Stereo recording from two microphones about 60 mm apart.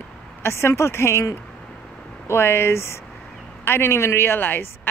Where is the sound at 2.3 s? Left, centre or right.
Left.